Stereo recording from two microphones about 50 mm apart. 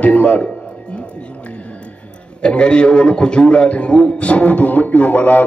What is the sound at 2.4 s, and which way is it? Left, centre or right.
A man's voice, left.